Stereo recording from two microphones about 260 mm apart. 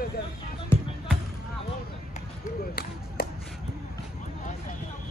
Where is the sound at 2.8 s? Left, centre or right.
Left.